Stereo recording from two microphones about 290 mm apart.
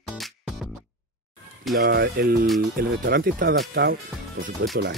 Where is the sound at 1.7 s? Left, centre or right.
Right.